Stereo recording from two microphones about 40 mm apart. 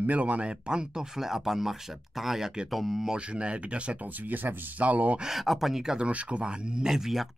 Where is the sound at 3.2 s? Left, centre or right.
Right.